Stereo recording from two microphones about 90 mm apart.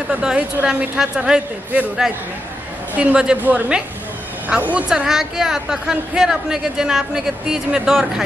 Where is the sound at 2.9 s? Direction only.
15° right (ahead or behind).